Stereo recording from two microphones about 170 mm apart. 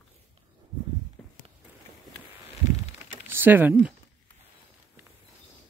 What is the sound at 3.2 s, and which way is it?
Speech, 10° right (ahead or behind).